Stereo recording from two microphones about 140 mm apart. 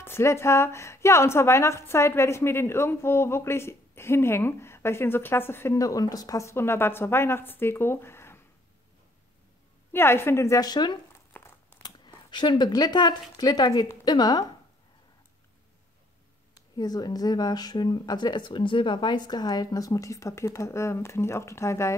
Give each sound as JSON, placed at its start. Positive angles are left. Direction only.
{"t": 0.0, "sound": "a woman's voice", "side_deg": 20}
{"t": 9.9, "sound": "speech", "side_deg": 15}
{"t": 11.3, "sound": "crumpling", "side_deg": 15}
{"t": 11.8, "sound": "speech", "side_deg": 35}
{"t": 16.5, "sound": "speech", "side_deg": 30}